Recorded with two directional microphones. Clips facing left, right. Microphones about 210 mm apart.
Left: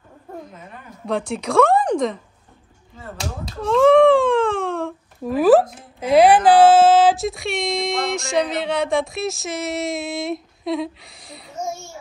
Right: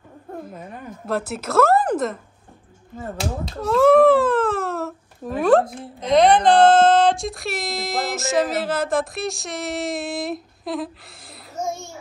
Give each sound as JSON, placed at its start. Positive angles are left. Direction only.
{"t": 1.0, "sound": "a woman's voice", "side_deg": -5}
{"t": 3.6, "sound": "speech", "side_deg": -5}